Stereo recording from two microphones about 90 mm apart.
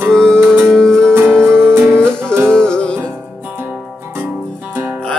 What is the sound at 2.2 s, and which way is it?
Music, 25° right (ahead or behind).